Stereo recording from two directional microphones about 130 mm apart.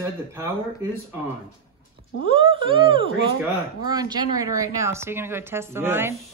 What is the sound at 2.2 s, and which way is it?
Speech, 40° right (ahead or behind).